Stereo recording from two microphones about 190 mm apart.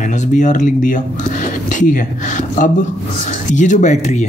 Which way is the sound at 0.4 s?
40° left (ahead or behind).